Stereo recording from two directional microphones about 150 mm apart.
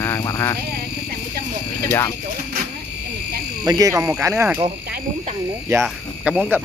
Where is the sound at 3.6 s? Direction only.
25° right (ahead or behind).